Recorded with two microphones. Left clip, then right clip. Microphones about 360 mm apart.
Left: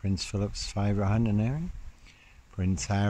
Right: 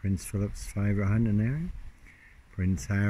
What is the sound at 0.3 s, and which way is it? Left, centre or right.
Speech, left.